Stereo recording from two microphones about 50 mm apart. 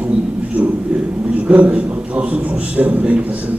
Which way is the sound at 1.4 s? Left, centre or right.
Right.